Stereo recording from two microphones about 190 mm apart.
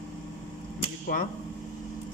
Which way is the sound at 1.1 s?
45° left (ahead or behind).